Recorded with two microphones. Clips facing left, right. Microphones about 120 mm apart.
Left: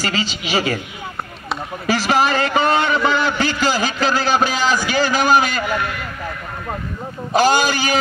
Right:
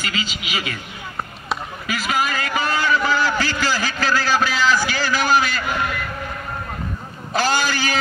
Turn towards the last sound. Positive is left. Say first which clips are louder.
# left 4 dB
turn(degrees=15)  # may be behind; listen again after turning